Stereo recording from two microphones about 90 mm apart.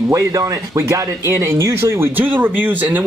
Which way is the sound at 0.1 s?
35° right (ahead or behind).